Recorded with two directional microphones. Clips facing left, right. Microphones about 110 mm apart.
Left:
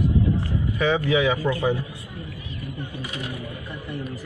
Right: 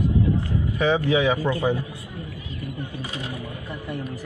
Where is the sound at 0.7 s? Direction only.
35° right (ahead or behind).